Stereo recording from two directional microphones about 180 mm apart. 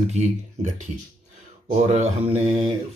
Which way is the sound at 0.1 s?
40° right (ahead or behind).